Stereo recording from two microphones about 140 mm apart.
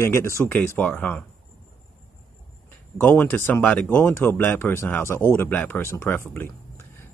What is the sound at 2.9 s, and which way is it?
Speech, 15° left (ahead or behind).